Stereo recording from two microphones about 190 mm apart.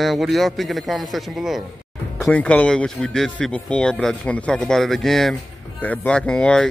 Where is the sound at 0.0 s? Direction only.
Centre (ahead or behind).